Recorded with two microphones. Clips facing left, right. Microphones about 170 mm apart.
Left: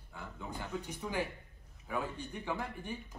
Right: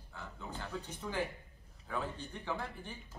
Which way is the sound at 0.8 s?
10° left (ahead or behind).